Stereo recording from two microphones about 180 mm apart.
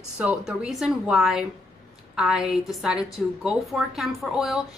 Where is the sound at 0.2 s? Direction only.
5° right (ahead or behind).